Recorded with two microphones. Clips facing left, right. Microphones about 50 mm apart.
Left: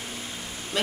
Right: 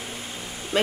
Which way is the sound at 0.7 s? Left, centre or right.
Right.